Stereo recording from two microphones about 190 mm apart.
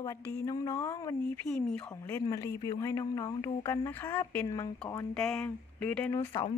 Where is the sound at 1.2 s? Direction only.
5° left (ahead or behind).